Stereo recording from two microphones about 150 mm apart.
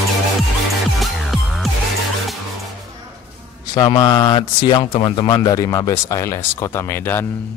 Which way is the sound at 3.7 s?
30° left (ahead or behind).